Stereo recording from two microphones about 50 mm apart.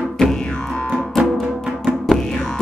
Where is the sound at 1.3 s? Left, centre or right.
Centre.